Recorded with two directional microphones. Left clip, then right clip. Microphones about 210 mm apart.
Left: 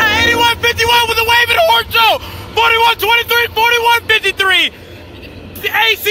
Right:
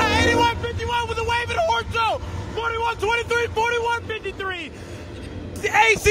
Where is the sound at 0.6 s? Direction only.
25° left (ahead or behind); by 2.2 s 10° left (ahead or behind).